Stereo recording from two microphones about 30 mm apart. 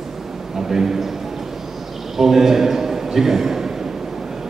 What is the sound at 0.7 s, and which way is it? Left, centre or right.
Speech, centre.